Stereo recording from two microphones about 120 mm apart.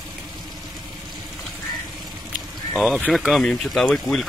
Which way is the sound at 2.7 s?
Centre (ahead or behind).